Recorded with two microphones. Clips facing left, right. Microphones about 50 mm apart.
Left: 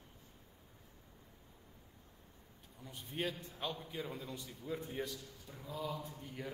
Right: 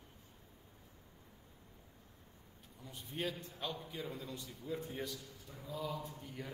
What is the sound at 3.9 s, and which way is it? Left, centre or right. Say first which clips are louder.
A man's voice: left 1 dB; centre.